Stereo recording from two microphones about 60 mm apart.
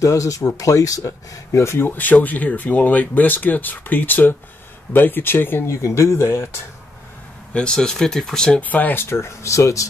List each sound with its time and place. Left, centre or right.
0.0 s speech: left
1.5 s speech: left
5.8 s speech: left
7.5 s speech: centre
8.5 s speech: left
9.0 s speech: left